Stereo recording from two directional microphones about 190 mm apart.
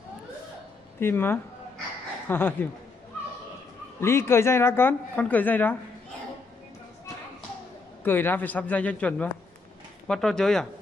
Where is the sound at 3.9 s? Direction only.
15° left (ahead or behind).